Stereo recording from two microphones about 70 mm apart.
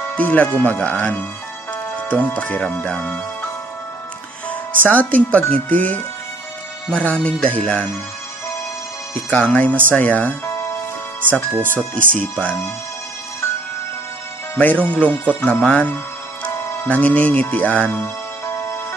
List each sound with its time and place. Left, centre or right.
0.1 s speech: left
4.5 s speech: left
9.1 s speech: left
10.4 s music: left
11.7 s speech: left
14.5 s speech: left